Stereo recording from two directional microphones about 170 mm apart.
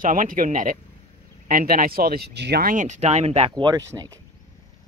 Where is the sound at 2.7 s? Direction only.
45° right (ahead or behind); by 3.8 s 25° right (ahead or behind).